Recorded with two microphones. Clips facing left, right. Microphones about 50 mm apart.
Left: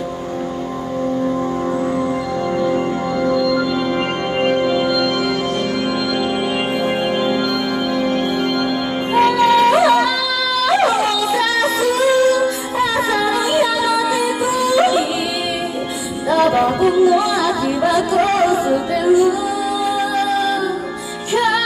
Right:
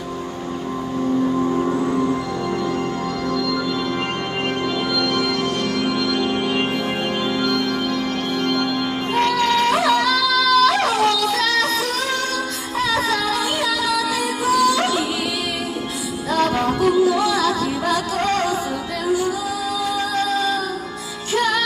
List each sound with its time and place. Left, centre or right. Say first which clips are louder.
1.4 s vehicle: even; centre
3.3 s organ: left 6 dB; centre
16.3 s music: left 5 dB; centre